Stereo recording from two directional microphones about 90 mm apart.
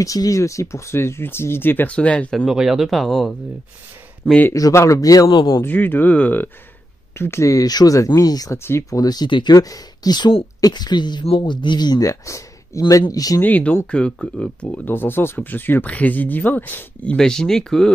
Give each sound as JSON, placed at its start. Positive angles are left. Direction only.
{"t": 0.0, "sound": "speech", "side_deg": 40}
{"t": 2.3, "sound": "speech", "side_deg": -5}
{"t": 4.6, "sound": "speech", "side_deg": 40}
{"t": 5.7, "sound": "speech", "side_deg": 20}
{"t": 8.6, "sound": "speech", "side_deg": 30}
{"t": 9.0, "sound": "speech", "side_deg": 50}
{"t": 9.6, "sound": "speech", "side_deg": 40}
{"t": 11.2, "sound": "speech", "side_deg": 70}
{"t": 13.4, "sound": "speech", "side_deg": 15}